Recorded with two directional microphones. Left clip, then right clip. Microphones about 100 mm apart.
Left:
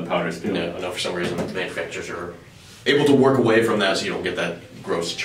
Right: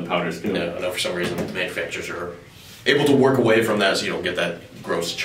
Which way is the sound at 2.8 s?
Centre (ahead or behind).